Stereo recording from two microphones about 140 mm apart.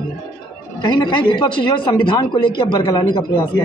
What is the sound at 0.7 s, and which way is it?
A man's voice, 30° left (ahead or behind).